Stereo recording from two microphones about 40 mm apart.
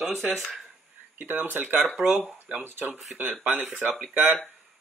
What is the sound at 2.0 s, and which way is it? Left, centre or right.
Speech, right.